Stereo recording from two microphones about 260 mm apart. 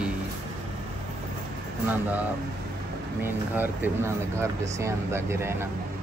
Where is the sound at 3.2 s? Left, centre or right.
Centre.